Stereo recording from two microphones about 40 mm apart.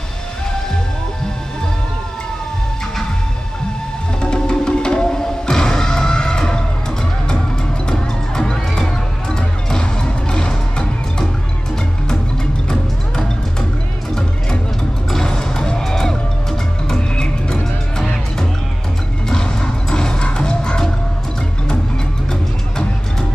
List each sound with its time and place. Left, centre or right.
4.2 s music: left
7.8 s music: centre
12.6 s music: centre
15.0 s music: centre
19.2 s music: centre